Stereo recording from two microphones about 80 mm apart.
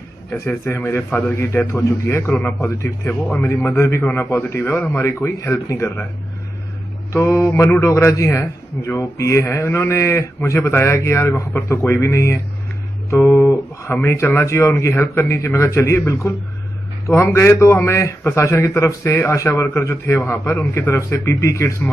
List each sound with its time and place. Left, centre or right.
0.5 s a man's voice: left
7.1 s a man's voice: left
7.8 s a man's voice: left
13.2 s guitar: left
14.3 s a man's voice: left